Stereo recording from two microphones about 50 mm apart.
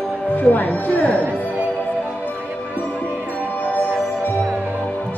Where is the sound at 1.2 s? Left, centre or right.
Right.